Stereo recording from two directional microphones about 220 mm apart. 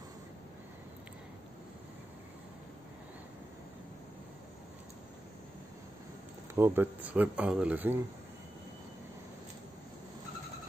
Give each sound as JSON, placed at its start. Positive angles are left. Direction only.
{"t": 6.5, "sound": "speech", "side_deg": -10}